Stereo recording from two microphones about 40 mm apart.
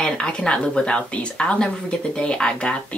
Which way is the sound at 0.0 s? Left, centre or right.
Centre.